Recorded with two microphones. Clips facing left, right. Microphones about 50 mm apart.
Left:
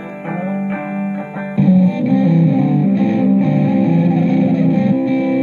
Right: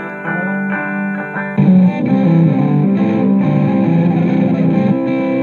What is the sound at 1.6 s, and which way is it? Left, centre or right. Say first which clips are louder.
Music: right 1 dB; right.